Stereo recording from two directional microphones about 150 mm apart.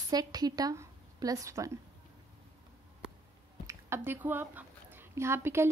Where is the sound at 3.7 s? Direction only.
15° right (ahead or behind).